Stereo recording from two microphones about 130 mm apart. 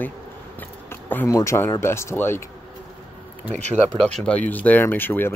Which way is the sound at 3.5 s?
60° right (ahead or behind).